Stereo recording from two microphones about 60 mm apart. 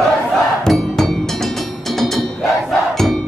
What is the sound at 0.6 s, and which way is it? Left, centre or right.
Percussion, centre.